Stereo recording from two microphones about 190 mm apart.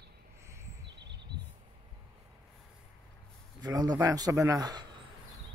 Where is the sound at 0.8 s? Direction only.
65° right (ahead or behind).